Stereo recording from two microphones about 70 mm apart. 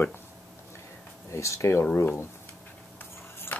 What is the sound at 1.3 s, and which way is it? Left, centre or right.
Speech, left.